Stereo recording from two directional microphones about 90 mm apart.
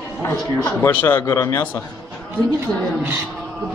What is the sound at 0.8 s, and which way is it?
Speech, 30° left (ahead or behind).